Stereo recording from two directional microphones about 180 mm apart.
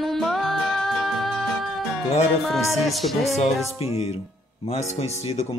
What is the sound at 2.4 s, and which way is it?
Speech, centre (ahead or behind).